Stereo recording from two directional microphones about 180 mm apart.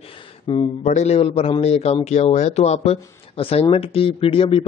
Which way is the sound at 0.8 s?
40° left (ahead or behind).